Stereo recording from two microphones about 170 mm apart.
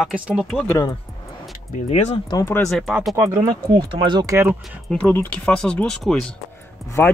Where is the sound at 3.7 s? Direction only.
30° right (ahead or behind).